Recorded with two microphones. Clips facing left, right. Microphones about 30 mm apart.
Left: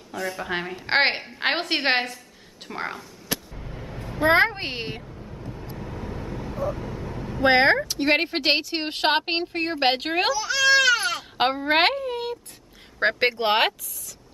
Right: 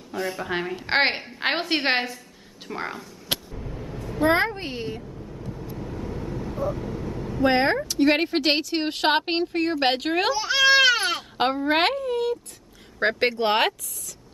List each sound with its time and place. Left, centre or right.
0.1 s a woman's voice: centre
0.4 s a woman's voice: centre
3.5 s a sound: centre
4.1 s a woman's voice: left
5.0 s vehicle: centre
7.4 s a woman's voice: left
7.9 s speech: centre
10.3 s speech: right
10.8 s baby cry: right
11.3 s a woman's voice: centre